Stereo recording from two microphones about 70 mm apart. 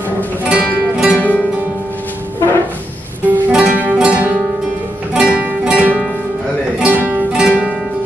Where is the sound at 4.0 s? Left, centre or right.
Centre.